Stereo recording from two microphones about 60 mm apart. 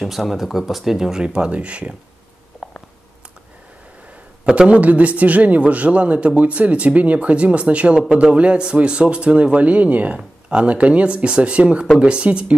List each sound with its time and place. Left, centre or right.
0.0 s speech: centre
2.5 s a sound: centre
4.5 s a man's voice: centre